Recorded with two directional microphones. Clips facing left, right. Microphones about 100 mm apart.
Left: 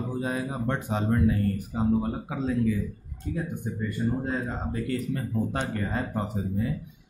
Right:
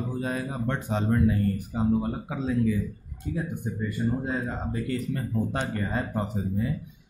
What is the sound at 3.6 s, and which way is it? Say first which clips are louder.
Speech: even; 15° right (ahead or behind).